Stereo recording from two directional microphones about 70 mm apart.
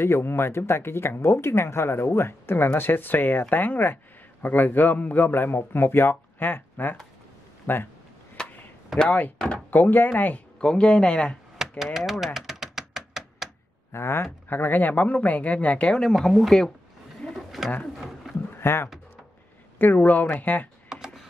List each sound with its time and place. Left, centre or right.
0.0 s speech: left
8.4 s a sound: centre
8.9 s speech: centre
9.7 s speech: left
10.6 s speech: centre
11.8 s speech: centre
12.4 s chopping: centre
13.9 s speech: left; by 16.7 s centre
17.3 s pigeon: centre
17.9 s a sound: centre
18.6 s speech: left
20.9 s a sound: centre